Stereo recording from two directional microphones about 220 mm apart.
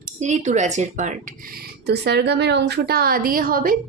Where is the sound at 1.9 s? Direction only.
50° right (ahead or behind).